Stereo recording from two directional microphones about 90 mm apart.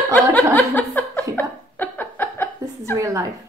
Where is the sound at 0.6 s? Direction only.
20° left (ahead or behind).